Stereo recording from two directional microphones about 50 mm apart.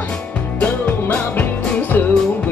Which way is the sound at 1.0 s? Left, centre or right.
Left.